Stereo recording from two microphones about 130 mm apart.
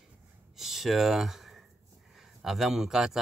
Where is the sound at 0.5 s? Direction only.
Centre (ahead or behind).